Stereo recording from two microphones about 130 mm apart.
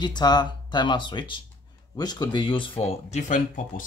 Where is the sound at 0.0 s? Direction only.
35° left (ahead or behind).